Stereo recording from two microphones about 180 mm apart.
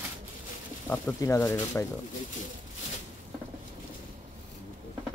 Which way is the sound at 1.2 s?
15° left (ahead or behind).